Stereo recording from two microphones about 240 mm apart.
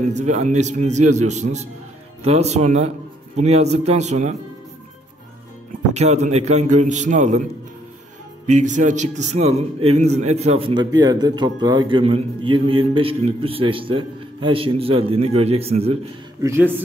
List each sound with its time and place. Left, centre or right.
0.1 s a man's voice: right
5.9 s a man's voice: right
8.5 s a man's voice: right
16.3 s speech: centre